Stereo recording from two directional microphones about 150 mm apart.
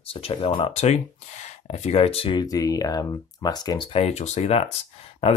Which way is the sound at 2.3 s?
25° left (ahead or behind).